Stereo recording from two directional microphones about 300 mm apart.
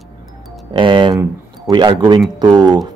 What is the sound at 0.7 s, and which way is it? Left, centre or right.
Speech, centre.